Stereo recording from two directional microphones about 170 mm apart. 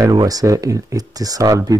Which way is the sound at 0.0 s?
20° right (ahead or behind).